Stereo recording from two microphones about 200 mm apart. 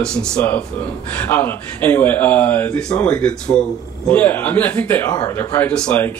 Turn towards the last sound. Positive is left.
turn(degrees=5)  # may be behind; listen again after turning